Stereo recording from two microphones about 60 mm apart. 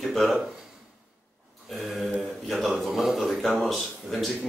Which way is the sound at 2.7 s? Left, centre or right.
Centre.